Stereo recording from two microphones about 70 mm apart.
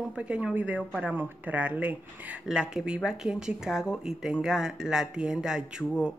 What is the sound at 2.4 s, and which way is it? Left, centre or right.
Speech, centre.